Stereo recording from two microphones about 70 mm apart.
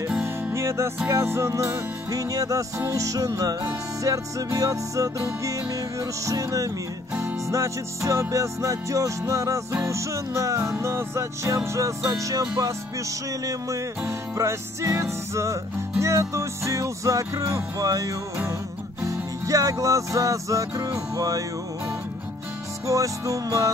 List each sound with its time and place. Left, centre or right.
0.2 s music: right
7.5 s music: right
22.8 s music: right